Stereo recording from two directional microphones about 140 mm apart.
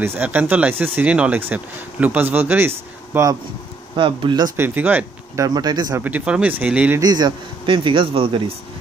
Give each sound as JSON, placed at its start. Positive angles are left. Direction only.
{"t": 0.0, "sound": "speech", "side_deg": -15}
{"t": 3.9, "sound": "speech", "side_deg": -35}
{"t": 4.6, "sound": "speech", "side_deg": -15}
{"t": 5.9, "sound": "speech", "side_deg": -10}
{"t": 7.0, "sound": "speech", "side_deg": -30}